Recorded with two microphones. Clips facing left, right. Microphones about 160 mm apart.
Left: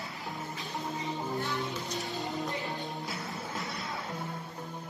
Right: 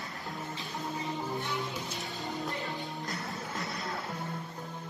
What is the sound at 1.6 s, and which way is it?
Music, centre (ahead or behind).